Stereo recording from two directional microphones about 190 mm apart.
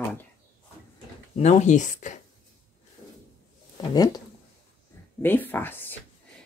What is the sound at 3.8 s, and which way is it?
Speech, 20° left (ahead or behind).